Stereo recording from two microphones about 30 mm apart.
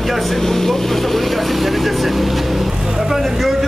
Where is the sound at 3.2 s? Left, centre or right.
Centre.